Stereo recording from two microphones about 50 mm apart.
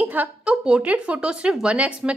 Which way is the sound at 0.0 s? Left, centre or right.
Right.